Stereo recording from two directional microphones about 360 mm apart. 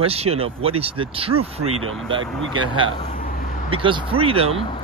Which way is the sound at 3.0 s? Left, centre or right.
Centre.